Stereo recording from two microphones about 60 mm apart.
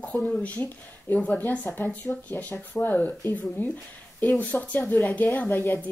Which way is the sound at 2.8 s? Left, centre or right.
Left.